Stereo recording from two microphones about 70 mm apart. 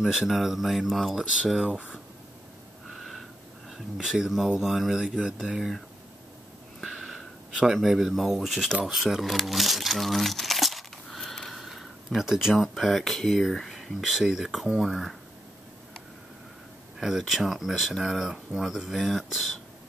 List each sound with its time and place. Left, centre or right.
0.0 s speech: centre
3.7 s speech: centre
6.8 s speech: centre
17.0 s speech: centre